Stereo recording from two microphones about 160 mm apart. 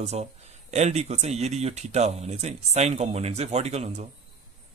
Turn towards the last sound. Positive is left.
turn(degrees=-40)  # may be behind; listen again after turning